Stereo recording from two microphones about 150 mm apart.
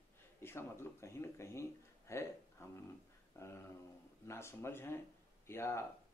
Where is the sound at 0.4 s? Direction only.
15° left (ahead or behind).